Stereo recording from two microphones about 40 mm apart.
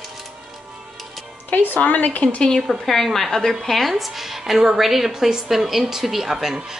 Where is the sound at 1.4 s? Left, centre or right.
Left.